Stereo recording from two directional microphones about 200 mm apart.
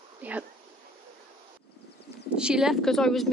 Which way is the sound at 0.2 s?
5° right (ahead or behind).